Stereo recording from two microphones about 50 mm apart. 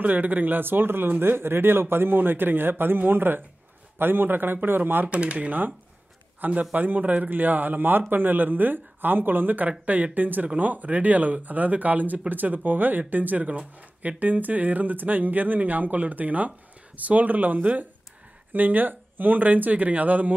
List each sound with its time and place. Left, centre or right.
0.0 s a man's voice: right
5.0 s speech: right